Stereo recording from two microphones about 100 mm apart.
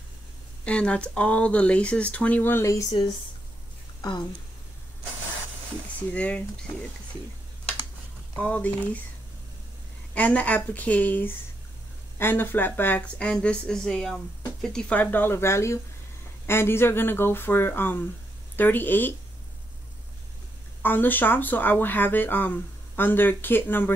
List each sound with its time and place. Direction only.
0.7 s speech: 10° left (ahead or behind); by 3.0 s 30° left (ahead or behind)
6.1 s speech: 15° left (ahead or behind)
8.4 s speech: 15° left (ahead or behind)
10.1 s speech: 15° left (ahead or behind)
20.8 s speech: 20° left (ahead or behind)